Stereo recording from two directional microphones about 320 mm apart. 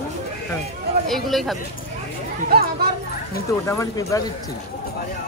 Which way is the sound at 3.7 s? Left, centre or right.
Centre.